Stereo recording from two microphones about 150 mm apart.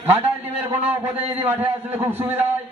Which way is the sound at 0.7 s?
15° right (ahead or behind).